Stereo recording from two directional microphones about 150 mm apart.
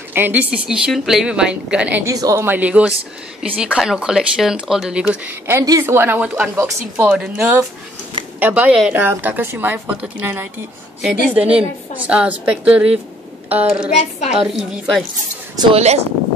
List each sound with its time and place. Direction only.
0.1 s speech: 10° right (ahead or behind)
2.0 s speech: 20° right (ahead or behind); by 15.0 s centre (ahead or behind)
15.7 s speech: 45° right (ahead or behind)